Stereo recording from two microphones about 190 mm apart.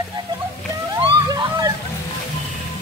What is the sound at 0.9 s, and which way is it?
Slosh, 20° right (ahead or behind).